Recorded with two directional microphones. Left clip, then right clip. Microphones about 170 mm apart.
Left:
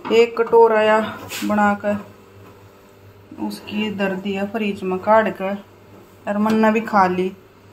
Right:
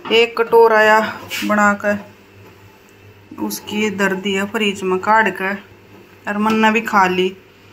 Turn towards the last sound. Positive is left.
turn(degrees=10)  # may be behind; listen again after turning